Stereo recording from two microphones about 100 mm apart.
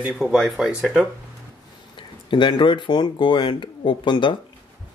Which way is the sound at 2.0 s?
55° left (ahead or behind).